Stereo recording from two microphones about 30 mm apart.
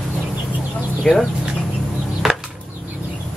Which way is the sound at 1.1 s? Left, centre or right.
Left.